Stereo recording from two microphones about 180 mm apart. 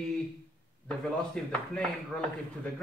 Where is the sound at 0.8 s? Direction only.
5° left (ahead or behind).